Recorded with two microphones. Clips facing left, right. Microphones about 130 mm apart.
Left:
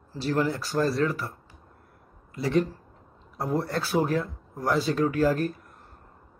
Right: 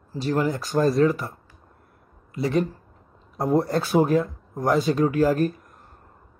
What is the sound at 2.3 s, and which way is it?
Speech, 25° right (ahead or behind).